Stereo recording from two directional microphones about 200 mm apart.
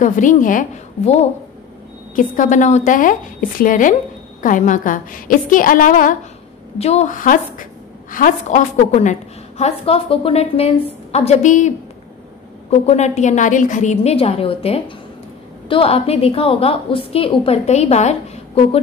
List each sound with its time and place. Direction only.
0.0 s a woman's voice: 40° left (ahead or behind)